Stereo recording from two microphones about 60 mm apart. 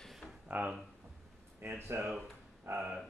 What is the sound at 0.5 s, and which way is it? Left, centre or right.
Speech, right.